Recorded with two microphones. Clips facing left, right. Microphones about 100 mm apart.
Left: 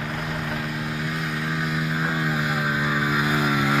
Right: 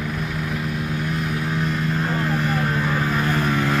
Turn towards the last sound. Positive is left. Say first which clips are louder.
# right 1 dB
turn(degrees=5)  # may be behind; listen again after turning